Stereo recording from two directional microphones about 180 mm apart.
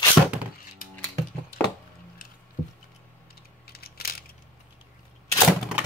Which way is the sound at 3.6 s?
60° left (ahead or behind).